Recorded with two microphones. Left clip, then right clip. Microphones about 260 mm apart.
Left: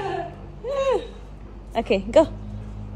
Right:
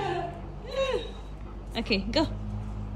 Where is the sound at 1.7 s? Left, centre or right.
Centre.